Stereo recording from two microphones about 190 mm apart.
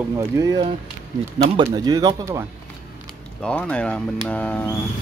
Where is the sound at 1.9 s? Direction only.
20° right (ahead or behind).